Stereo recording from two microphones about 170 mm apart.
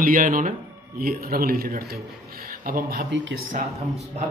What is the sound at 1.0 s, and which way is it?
Speech, 60° right (ahead or behind).